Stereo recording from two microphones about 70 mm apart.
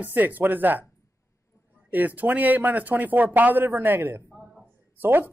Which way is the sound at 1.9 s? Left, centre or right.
Right.